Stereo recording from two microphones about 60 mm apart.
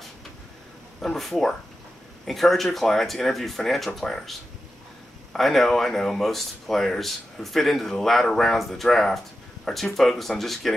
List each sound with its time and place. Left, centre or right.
1.0 s speech: centre